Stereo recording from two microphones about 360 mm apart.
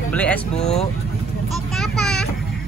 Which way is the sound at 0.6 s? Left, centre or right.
Centre.